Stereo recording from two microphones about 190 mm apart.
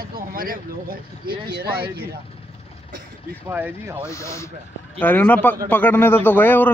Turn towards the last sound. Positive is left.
turn(degrees=10)  # may be behind; listen again after turning